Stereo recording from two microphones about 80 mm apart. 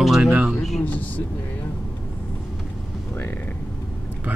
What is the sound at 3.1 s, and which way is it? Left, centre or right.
Speech, left.